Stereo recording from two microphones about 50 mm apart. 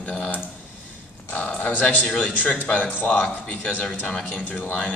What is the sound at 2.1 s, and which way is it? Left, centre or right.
Speech, left.